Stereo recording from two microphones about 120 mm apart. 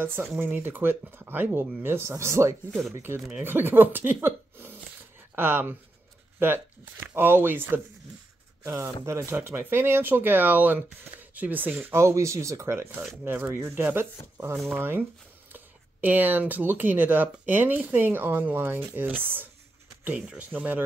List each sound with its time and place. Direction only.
0.0 s speech: 20° right (ahead or behind)
5.3 s speech: 15° right (ahead or behind)